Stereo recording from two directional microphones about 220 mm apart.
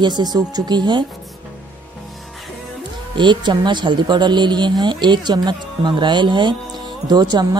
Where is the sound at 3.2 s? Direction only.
20° right (ahead or behind).